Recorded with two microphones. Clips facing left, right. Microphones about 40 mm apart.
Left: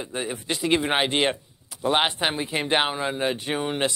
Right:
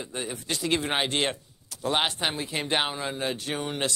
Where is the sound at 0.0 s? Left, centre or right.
Centre.